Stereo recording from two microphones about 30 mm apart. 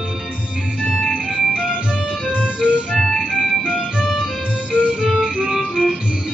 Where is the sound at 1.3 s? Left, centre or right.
Right.